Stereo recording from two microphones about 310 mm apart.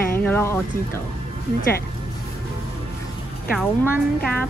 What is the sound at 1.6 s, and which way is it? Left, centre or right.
Speech, left.